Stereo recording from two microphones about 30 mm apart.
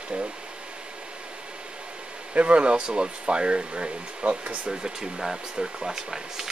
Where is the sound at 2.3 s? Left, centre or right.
Right.